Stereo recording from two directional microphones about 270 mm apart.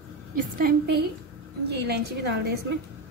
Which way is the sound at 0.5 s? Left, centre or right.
Right.